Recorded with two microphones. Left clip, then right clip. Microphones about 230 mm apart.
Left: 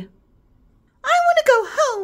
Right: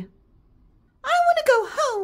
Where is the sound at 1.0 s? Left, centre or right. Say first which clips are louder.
Left 3 dB; centre.